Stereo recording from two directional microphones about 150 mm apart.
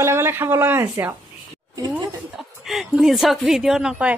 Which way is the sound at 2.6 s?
Centre (ahead or behind).